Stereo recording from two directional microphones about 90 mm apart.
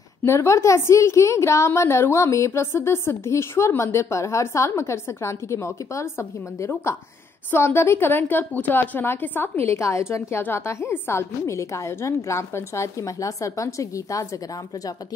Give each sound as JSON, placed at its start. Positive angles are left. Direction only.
{"t": 0.2, "sound": "a woman's voice", "side_deg": 30}